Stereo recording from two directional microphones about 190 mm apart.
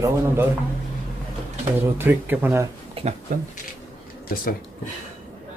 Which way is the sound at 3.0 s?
30° right (ahead or behind).